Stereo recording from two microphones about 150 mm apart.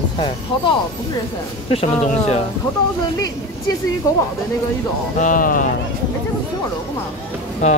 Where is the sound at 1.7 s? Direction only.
40° left (ahead or behind).